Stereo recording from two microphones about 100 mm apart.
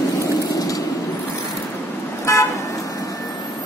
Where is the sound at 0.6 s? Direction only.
35° left (ahead or behind).